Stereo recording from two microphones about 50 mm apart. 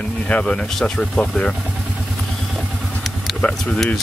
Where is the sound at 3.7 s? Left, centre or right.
Centre.